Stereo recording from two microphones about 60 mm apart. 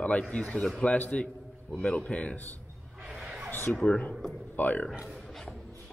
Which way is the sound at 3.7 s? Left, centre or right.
Left.